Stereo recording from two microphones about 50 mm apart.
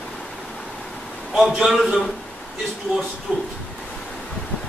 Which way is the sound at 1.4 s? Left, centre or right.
Centre.